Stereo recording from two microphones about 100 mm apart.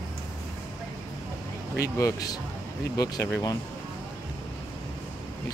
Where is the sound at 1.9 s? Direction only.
35° left (ahead or behind).